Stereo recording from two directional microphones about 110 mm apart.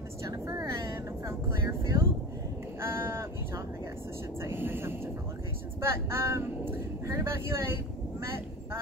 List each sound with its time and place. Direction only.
0.2 s vehicle: 30° right (ahead or behind)
4.4 s speech: 20° right (ahead or behind)